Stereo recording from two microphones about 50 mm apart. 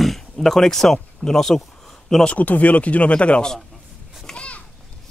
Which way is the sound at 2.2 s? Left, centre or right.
Left.